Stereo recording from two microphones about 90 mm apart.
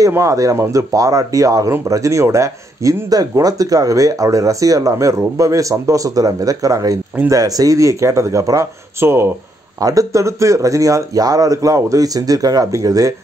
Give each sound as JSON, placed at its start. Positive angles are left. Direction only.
{"t": 0.1, "sound": "speech", "side_deg": -40}
{"t": 9.0, "sound": "speech", "side_deg": -25}
{"t": 9.8, "sound": "speech", "side_deg": -40}